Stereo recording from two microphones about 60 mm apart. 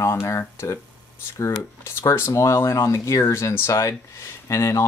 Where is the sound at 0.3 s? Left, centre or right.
Left.